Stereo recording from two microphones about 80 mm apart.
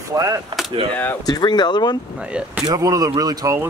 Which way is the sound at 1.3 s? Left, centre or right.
Left.